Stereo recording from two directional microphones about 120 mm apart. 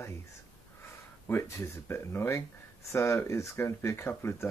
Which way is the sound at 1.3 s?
20° left (ahead or behind).